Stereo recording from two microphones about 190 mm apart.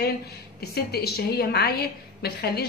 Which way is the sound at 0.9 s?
55° left (ahead or behind).